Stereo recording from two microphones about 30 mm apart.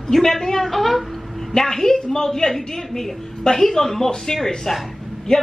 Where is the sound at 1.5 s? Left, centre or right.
Centre.